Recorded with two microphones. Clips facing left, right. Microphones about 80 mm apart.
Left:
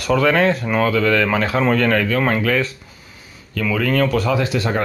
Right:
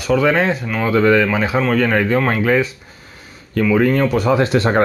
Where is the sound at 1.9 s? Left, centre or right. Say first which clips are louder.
Right 1 dB; right.